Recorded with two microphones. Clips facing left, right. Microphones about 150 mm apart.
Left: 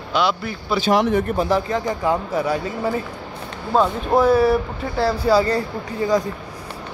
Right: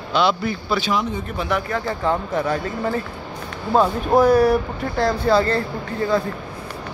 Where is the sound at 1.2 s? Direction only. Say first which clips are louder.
Left 4 dB; 35° left (ahead or behind).